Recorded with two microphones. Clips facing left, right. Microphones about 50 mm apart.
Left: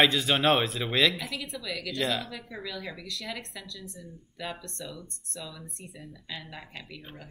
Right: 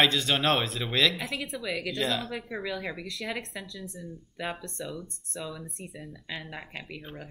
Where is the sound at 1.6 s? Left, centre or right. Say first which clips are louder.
Right 3 dB; right.